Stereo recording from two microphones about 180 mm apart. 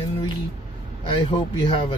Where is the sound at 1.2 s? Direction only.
30° left (ahead or behind).